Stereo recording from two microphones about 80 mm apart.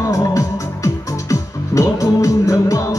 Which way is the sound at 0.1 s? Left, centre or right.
Left.